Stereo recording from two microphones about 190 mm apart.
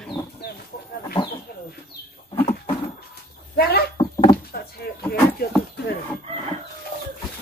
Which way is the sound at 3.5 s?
55° left (ahead or behind).